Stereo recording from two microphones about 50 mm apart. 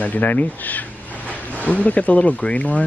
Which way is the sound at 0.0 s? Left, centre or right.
Left.